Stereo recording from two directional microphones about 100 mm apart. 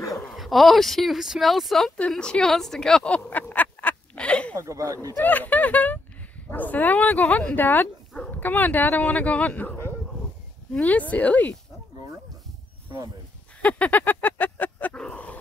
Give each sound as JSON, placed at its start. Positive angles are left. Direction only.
{"t": 0.3, "sound": "speech", "side_deg": 0}
{"t": 4.6, "sound": "speech", "side_deg": -35}
{"t": 5.1, "sound": "speech", "side_deg": 20}
{"t": 13.6, "sound": "dog", "side_deg": 15}